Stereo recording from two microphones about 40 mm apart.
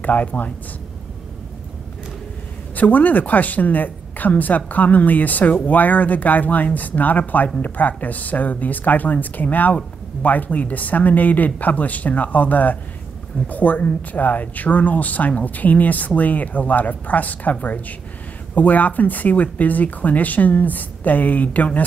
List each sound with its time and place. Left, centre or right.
0.0 s speech: left
2.7 s speech: left